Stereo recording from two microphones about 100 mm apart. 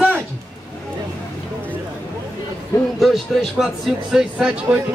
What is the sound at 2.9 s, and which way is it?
Speech, centre (ahead or behind).